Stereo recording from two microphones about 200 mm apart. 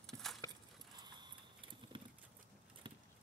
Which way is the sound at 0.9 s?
20° right (ahead or behind).